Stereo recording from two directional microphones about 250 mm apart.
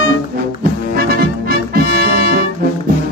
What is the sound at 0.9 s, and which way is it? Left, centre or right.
Music, right.